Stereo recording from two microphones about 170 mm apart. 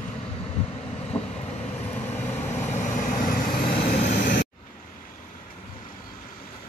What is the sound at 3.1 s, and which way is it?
Vehicle, 50° left (ahead or behind).